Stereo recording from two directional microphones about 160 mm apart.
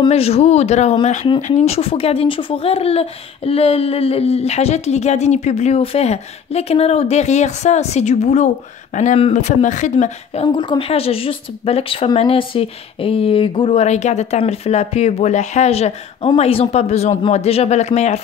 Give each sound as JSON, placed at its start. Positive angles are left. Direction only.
{"t": 0.0, "sound": "speech", "side_deg": 40}
{"t": 1.2, "sound": "speech", "side_deg": 35}